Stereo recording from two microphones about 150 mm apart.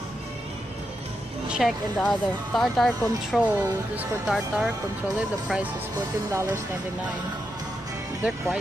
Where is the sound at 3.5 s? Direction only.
15° right (ahead or behind).